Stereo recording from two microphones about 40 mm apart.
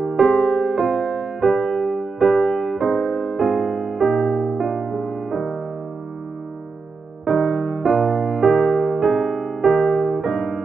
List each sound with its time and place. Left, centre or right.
0.0 s music: centre
7.2 s music: centre